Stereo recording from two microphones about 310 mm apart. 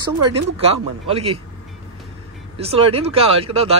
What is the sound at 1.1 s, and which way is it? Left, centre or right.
Speech, centre.